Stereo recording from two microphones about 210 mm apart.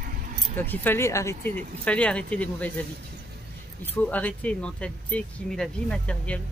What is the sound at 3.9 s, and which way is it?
Speech, 5° left (ahead or behind).